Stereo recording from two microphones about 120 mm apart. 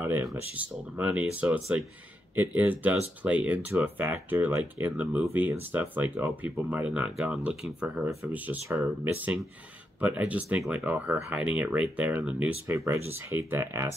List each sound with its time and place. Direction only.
0.0 s speech: 20° right (ahead or behind)
12.6 s speech: 25° right (ahead or behind)